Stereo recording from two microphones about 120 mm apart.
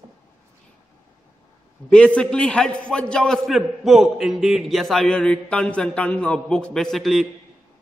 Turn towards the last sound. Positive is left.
turn(degrees=0)  # may be behind; listen again after turning